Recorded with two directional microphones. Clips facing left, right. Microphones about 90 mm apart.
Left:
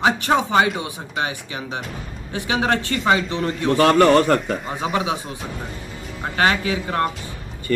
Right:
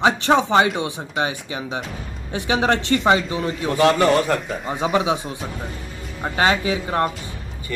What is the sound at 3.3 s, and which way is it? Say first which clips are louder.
Speech: left 2 dB; 10° right (ahead or behind).